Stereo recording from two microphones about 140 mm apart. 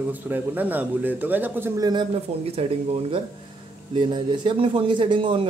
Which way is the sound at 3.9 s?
35° right (ahead or behind).